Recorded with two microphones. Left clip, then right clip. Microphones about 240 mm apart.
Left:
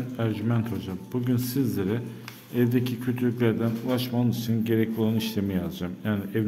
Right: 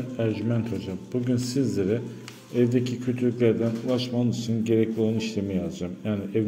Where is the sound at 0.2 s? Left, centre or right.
Centre.